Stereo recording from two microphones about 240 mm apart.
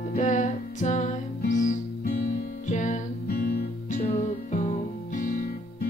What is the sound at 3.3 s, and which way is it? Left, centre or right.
Guitar, left.